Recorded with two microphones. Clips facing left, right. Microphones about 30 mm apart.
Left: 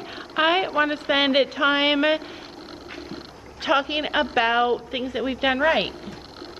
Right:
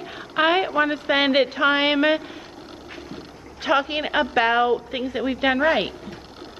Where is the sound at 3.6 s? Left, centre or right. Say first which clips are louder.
Right 1 dB; centre.